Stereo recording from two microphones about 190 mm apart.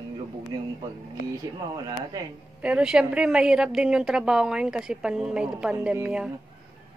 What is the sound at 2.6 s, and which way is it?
A woman's voice, 5° right (ahead or behind).